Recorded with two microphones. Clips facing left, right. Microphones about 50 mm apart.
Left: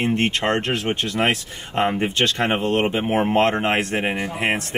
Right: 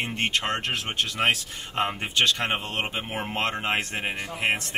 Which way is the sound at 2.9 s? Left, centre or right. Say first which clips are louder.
Left 11 dB; left.